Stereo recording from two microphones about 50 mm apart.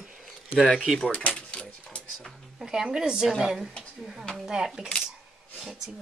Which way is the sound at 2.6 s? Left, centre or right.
Centre.